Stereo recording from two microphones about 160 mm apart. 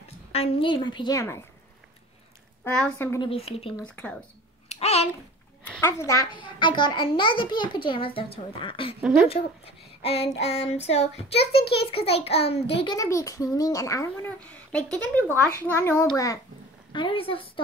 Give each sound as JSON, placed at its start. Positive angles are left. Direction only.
{"t": 0.3, "sound": "a child's voice", "side_deg": 40}
{"t": 2.6, "sound": "a child's voice", "side_deg": 10}
{"t": 3.2, "sound": "child singing", "side_deg": 35}
{"t": 3.8, "sound": "a child's voice", "side_deg": 5}
{"t": 4.6, "sound": "a sound", "side_deg": 40}
{"t": 5.6, "sound": "a child's voice", "side_deg": 15}
{"t": 9.0, "sound": "speech", "side_deg": -5}
{"t": 10.0, "sound": "child singing", "side_deg": 40}
{"t": 11.5, "sound": "a child's voice", "side_deg": 90}
{"t": 11.9, "sound": "child singing", "side_deg": 40}
{"t": 12.9, "sound": "a child's voice", "side_deg": 20}
{"t": 16.9, "sound": "child singing", "side_deg": 30}